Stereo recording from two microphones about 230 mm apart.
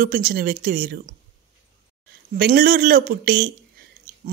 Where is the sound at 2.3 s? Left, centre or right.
Right.